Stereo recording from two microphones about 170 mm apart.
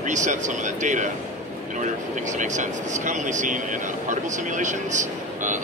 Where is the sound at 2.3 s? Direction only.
45° right (ahead or behind).